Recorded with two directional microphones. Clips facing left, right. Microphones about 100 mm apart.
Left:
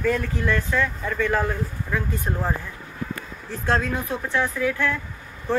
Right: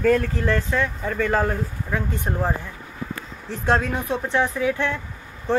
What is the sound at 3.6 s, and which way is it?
Speech, 20° right (ahead or behind).